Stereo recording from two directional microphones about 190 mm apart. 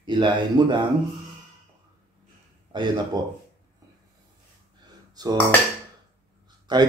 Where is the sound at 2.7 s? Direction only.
25° right (ahead or behind).